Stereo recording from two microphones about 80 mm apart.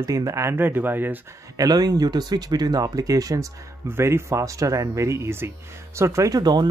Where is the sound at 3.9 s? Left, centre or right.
Right.